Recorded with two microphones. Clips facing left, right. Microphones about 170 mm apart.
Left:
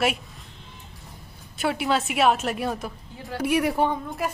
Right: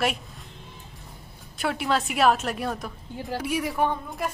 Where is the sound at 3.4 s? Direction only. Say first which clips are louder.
Left 7 dB; 60° left (ahead or behind).